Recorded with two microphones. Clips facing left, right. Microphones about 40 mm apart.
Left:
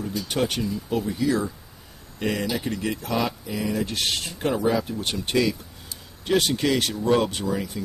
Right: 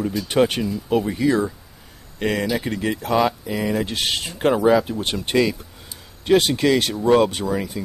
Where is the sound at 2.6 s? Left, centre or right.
Right.